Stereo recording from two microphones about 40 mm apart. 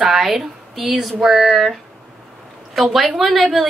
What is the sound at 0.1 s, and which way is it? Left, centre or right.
Speech, centre.